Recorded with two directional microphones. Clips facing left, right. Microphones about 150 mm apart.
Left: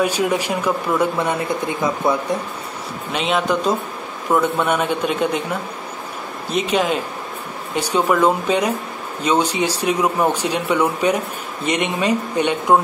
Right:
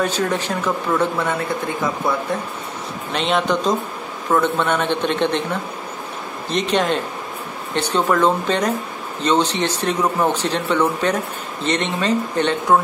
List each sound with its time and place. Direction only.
0.0 s speech: 10° left (ahead or behind)
3.1 s speech: 5° left (ahead or behind)